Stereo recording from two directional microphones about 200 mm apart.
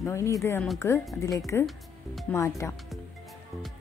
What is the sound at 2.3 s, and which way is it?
Speech, 15° left (ahead or behind).